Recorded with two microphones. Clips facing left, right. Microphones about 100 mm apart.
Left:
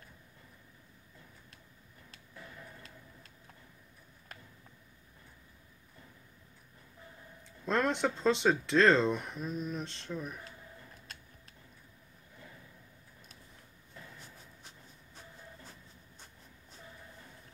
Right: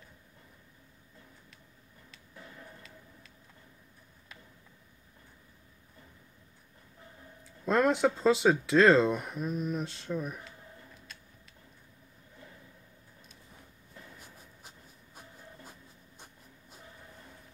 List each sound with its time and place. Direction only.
7.4 s speech: 5° right (ahead or behind)